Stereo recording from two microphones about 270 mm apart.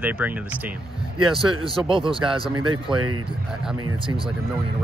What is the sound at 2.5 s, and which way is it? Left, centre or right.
Speech, right.